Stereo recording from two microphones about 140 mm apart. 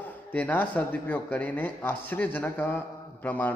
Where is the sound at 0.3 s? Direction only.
10° left (ahead or behind).